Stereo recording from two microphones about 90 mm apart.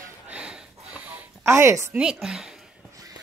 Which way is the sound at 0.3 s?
15° right (ahead or behind).